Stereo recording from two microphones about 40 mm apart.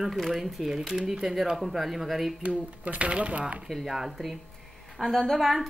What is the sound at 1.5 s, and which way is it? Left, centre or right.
Speech, centre.